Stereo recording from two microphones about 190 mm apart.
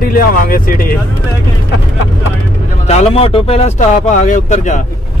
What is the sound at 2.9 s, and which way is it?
Speech, 35° left (ahead or behind).